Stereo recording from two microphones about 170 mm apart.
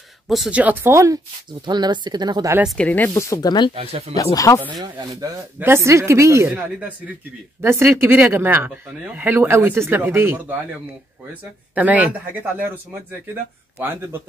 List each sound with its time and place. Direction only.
0.3 s speech: 5° right (ahead or behind); by 2.5 s 25° right (ahead or behind)
2.5 s speech: centre (ahead or behind); by 3.7 s 25° left (ahead or behind)
3.7 s speech: 35° right (ahead or behind)
4.1 s speech: 20° left (ahead or behind)
4.9 s speech: 20° right (ahead or behind)